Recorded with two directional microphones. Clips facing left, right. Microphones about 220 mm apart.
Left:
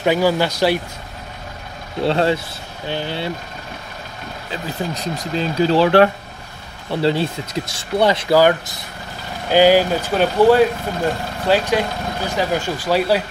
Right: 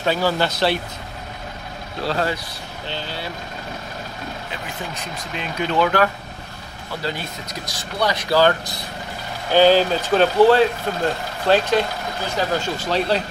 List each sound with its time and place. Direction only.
0.0 s speech: 15° left (ahead or behind)
2.0 s speech: 25° left (ahead or behind)
4.6 s speech: 35° left (ahead or behind)
8.3 s speech: 15° left (ahead or behind)